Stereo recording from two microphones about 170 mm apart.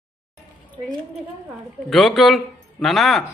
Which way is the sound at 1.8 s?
Centre (ahead or behind).